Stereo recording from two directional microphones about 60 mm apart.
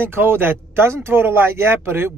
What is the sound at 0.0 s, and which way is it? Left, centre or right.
Speech, right.